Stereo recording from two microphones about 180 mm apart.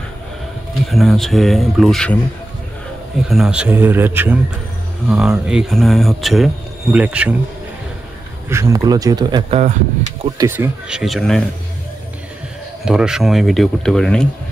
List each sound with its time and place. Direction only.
0.8 s speech: centre (ahead or behind)
3.3 s speech: 5° right (ahead or behind)
8.5 s speech: 15° right (ahead or behind)
9.5 s speech: 40° right (ahead or behind)
10.3 s speech: 15° right (ahead or behind); by 11.4 s centre (ahead or behind)
12.8 s speech: 5° right (ahead or behind)